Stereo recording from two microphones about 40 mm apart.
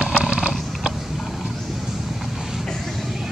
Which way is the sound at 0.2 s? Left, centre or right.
Right.